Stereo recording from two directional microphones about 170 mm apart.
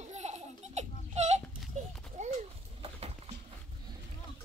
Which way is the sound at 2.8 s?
35° right (ahead or behind).